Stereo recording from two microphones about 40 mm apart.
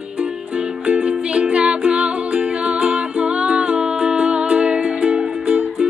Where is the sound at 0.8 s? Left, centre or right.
Right.